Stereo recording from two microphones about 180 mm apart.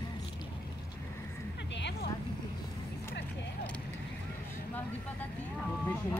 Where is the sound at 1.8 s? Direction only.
75° left (ahead or behind).